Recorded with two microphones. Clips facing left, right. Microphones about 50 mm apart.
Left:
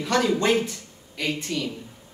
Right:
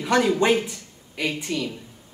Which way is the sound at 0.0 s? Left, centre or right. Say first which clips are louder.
Right 2 dB; centre.